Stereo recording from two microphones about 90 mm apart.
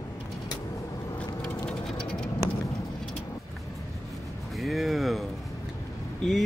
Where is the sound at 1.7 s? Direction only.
10° left (ahead or behind).